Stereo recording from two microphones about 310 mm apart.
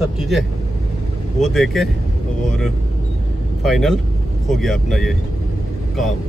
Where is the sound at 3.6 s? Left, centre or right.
Centre.